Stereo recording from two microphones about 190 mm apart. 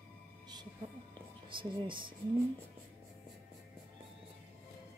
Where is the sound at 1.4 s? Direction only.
25° right (ahead or behind).